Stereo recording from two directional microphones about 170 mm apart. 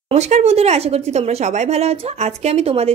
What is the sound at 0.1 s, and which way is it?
Speech, 40° right (ahead or behind).